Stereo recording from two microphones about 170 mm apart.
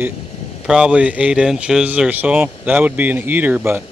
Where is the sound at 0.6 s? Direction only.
5° right (ahead or behind).